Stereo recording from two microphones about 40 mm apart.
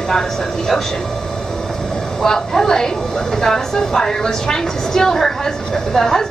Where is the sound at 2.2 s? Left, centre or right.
Centre.